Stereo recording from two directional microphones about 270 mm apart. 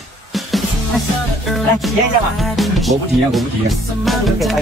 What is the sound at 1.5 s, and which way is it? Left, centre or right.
Speech, centre.